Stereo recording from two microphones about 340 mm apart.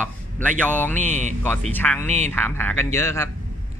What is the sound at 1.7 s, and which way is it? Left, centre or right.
Speech, centre.